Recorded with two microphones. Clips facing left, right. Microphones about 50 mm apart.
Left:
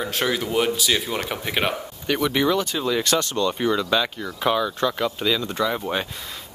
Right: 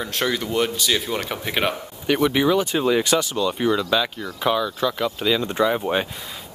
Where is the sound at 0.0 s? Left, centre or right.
Centre.